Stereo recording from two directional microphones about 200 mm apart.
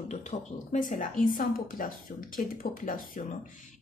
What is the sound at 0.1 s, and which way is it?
A woman's voice, 35° left (ahead or behind).